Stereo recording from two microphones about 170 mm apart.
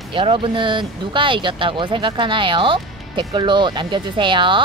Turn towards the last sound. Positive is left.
turn(degrees=-30)  # may be behind; listen again after turning